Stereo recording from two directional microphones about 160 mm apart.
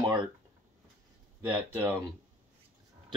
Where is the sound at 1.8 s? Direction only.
15° right (ahead or behind).